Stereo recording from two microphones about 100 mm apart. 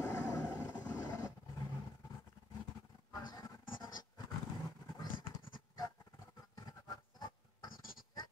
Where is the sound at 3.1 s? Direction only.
40° left (ahead or behind).